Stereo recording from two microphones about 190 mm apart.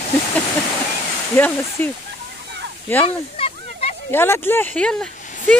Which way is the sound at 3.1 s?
30° left (ahead or behind).